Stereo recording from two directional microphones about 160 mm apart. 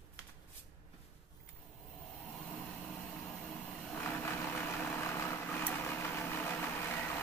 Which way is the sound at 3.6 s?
15° left (ahead or behind).